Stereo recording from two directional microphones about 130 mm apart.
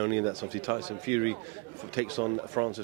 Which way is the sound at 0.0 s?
25° right (ahead or behind).